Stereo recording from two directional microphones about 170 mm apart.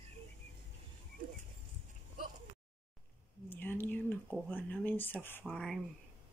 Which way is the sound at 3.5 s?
10° left (ahead or behind).